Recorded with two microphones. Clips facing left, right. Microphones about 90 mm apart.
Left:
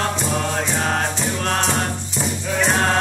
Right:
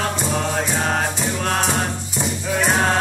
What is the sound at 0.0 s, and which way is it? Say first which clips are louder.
Music: even; centre (ahead or behind).